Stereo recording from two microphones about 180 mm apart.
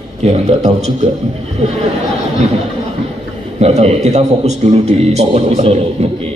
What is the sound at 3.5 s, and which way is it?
A man's voice, 40° right (ahead or behind).